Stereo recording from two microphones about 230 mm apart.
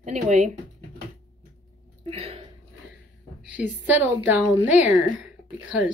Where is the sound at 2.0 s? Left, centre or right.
Right.